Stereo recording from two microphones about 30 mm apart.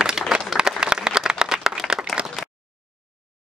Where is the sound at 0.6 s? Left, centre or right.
Right.